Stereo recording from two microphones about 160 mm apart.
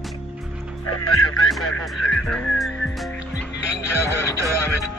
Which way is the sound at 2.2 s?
5° left (ahead or behind).